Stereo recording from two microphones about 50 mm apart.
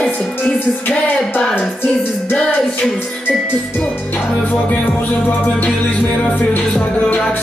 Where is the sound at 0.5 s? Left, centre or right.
Left.